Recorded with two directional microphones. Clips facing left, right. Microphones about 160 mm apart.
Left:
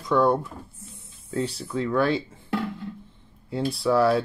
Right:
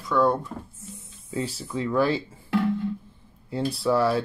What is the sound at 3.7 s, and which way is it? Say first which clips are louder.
Speech: left 2 dB; centre (ahead or behind).